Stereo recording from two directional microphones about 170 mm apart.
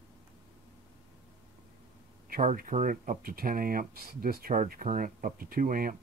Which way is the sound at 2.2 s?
55° right (ahead or behind).